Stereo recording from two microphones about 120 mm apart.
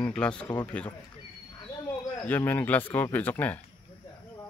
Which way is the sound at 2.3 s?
15° left (ahead or behind).